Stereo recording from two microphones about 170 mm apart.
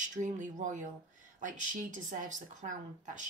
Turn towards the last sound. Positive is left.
turn(degrees=-45)  # may be behind; listen again after turning